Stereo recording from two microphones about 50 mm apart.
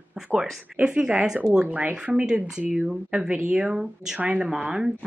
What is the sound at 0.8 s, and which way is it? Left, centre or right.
Speech, right.